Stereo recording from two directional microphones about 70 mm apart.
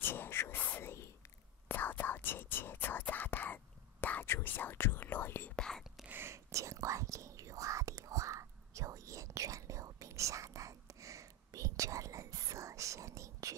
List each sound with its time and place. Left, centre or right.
0.0 s whispering: left
1.7 s whispering: left
5.6 s speech: centre
6.0 s whispering: right
6.3 s whispering: right